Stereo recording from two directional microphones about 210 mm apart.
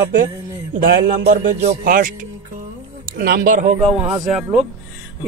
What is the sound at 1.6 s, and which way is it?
Speech, 40° right (ahead or behind).